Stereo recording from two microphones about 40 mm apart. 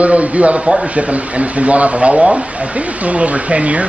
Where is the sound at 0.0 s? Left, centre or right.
Right.